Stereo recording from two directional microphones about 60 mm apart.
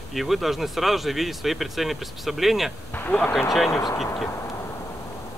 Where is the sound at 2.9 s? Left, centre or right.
Left.